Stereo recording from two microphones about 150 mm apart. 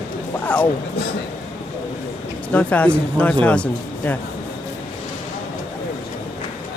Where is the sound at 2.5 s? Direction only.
10° left (ahead or behind).